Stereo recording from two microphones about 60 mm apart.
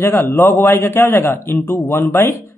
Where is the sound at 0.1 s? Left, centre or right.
Left.